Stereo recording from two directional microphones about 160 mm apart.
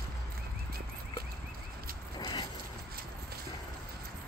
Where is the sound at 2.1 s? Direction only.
25° left (ahead or behind).